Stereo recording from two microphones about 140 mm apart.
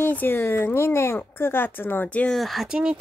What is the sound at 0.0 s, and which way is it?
Speech, 15° left (ahead or behind).